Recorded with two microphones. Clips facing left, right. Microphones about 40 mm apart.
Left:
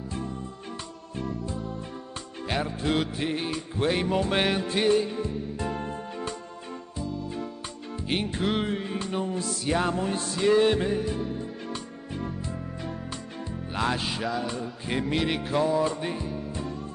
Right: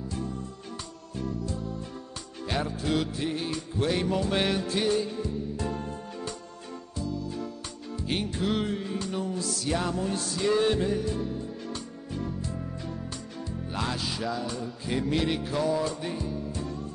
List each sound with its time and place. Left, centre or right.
1.1 s music: left
13.7 s music: left